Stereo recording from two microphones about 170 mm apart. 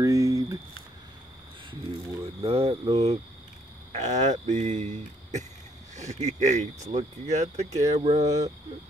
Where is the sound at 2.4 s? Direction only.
35° right (ahead or behind).